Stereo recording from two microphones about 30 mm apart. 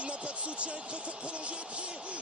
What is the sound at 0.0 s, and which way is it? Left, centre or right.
Basketball bounce, right.